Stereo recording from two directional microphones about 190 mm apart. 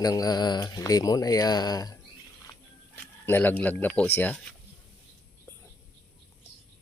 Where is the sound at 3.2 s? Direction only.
10° left (ahead or behind).